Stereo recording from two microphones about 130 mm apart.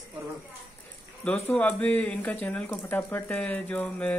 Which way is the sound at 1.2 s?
10° left (ahead or behind).